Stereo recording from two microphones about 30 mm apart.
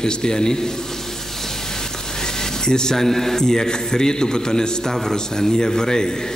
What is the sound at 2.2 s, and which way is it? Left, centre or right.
A man's voice, left.